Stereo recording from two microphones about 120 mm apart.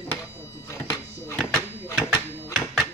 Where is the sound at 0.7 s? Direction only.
25° left (ahead or behind).